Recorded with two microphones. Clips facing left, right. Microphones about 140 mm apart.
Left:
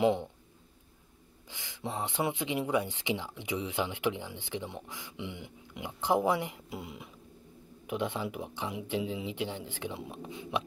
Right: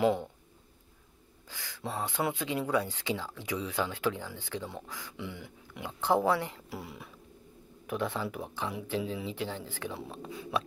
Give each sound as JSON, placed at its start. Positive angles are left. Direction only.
{"t": 0.0, "sound": "speech", "side_deg": 20}
{"t": 1.5, "sound": "speech", "side_deg": 20}